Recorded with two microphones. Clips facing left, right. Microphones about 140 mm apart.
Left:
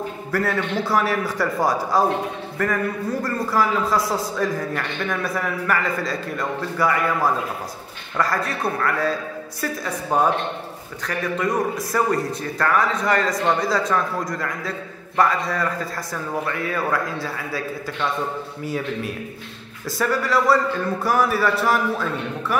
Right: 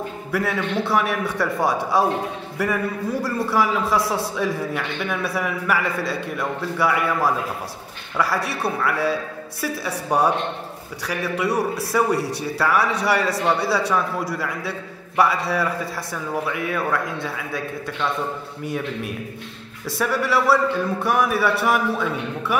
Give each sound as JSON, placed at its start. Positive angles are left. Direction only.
{"t": 0.3, "sound": "a man's voice", "side_deg": 0}
{"t": 8.5, "sound": "a man's voice", "side_deg": -5}
{"t": 12.2, "sound": "speech", "side_deg": -75}
{"t": 12.5, "sound": "a man's voice", "side_deg": -10}